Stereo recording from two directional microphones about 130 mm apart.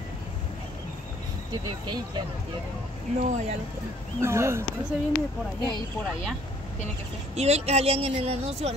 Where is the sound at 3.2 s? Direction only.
60° right (ahead or behind).